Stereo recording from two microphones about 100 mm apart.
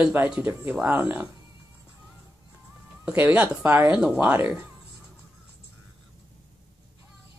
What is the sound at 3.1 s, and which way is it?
Speech, 15° right (ahead or behind).